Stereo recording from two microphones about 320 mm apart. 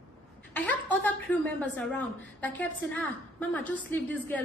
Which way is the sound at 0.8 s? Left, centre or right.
Centre.